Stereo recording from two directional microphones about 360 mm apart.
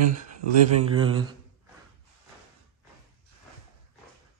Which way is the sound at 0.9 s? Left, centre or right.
Centre.